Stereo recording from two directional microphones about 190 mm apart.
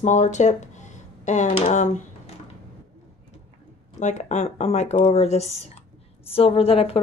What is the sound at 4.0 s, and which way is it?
A woman's voice, 40° left (ahead or behind).